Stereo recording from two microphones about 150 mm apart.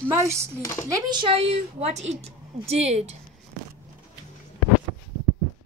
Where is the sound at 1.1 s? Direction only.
35° right (ahead or behind).